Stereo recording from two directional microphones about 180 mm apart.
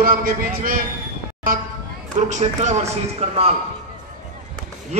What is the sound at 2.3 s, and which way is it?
A man's voice, 40° right (ahead or behind).